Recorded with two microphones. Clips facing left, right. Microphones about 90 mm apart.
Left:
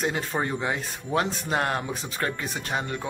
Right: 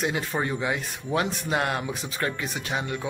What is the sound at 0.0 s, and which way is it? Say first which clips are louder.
Speech: even; 35° left (ahead or behind).